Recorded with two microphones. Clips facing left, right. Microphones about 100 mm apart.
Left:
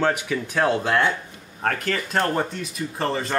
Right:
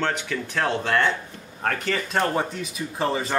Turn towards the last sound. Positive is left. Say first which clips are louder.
# even
turn(degrees=-5)  # may be behind; listen again after turning